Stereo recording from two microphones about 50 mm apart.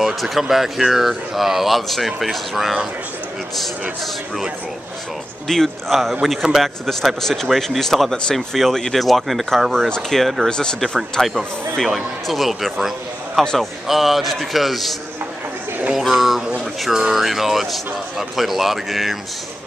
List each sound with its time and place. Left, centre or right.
0.0 s speech: centre
5.5 s speech: centre
11.1 s speech: centre
13.4 s speech: centre
16.0 s speech: centre